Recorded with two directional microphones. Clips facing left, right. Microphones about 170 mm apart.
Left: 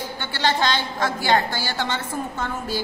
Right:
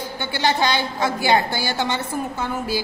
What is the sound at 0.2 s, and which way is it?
A woman's voice, 10° right (ahead or behind).